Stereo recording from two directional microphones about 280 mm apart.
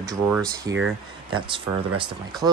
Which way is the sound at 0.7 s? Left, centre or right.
Right.